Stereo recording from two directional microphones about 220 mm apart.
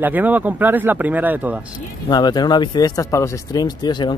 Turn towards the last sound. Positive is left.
turn(degrees=20)  # may be behind; listen again after turning